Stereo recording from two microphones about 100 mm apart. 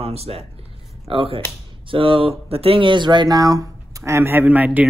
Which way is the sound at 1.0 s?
70° right (ahead or behind).